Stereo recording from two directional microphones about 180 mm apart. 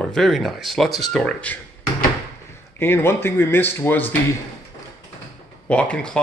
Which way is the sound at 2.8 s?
15° left (ahead or behind).